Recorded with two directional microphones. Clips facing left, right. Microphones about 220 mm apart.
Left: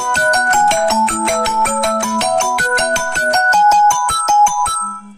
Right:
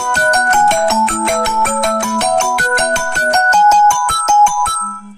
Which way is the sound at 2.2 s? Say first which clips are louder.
Right 1 dB; 55° right (ahead or behind).